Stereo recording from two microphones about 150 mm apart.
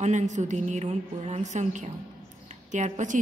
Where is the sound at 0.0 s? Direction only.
55° right (ahead or behind).